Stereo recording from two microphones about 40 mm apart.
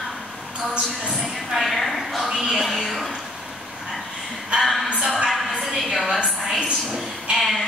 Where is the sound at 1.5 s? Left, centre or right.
Centre.